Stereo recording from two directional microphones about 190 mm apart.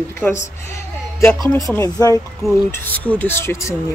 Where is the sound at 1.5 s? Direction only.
10° left (ahead or behind).